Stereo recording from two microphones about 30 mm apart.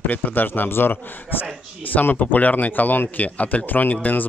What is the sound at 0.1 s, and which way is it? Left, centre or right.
Speech, left.